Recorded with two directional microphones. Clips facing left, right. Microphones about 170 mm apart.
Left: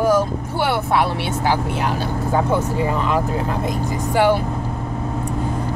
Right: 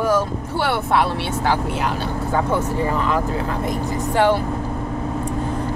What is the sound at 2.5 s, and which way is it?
Speech, 15° left (ahead or behind).